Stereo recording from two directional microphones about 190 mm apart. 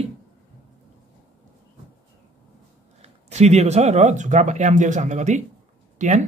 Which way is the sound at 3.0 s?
35° right (ahead or behind).